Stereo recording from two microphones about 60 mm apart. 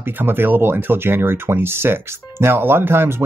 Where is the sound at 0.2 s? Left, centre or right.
Right.